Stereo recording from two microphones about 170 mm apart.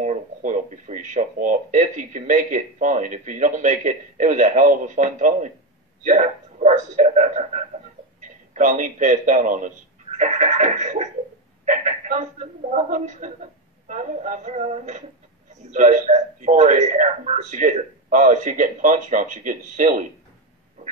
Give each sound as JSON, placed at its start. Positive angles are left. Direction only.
{"t": 0.0, "sound": "a man's voice", "side_deg": -45}